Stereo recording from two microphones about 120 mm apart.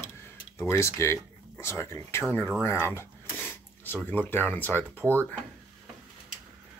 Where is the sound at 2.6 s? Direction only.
20° left (ahead or behind).